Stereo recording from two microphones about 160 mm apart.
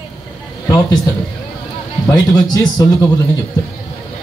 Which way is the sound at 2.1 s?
25° left (ahead or behind).